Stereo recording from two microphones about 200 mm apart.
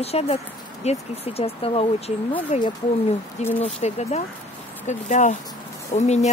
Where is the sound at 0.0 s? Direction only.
30° left (ahead or behind).